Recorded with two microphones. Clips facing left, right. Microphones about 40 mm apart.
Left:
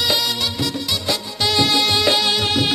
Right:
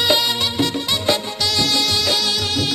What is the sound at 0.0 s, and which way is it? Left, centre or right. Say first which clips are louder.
Music: right 2 dB; centre.